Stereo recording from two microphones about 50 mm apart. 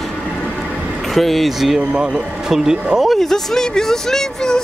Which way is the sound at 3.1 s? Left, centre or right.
Centre.